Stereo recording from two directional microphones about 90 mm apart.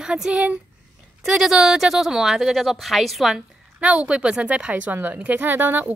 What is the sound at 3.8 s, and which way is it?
Speech, 10° right (ahead or behind).